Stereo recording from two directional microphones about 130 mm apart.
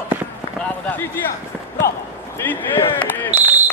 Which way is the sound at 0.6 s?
10° left (ahead or behind).